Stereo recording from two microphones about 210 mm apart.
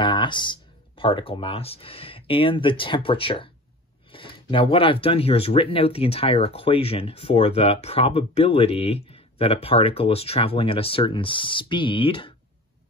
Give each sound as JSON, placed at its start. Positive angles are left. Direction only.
{"t": 0.0, "sound": "speech", "side_deg": 25}